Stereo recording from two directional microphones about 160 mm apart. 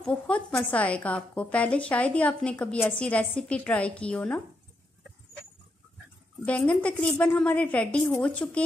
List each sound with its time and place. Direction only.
0.0 s a woman's voice: 5° left (ahead or behind)
6.4 s a woman's voice: 10° left (ahead or behind)